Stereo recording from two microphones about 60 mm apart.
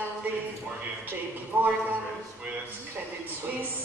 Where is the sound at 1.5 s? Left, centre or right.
Right.